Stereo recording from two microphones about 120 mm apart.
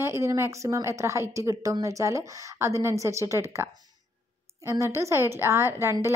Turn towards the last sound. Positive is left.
turn(degrees=-20)  # may be behind; listen again after turning